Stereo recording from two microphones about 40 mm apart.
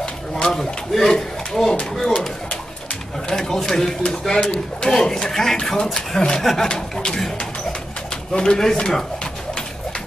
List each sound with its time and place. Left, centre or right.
0.5 s speech: centre
6.7 s speech: centre
8.3 s speech: centre
8.7 s a sound: left